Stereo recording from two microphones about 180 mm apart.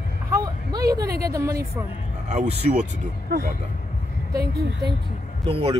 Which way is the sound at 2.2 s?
40° right (ahead or behind).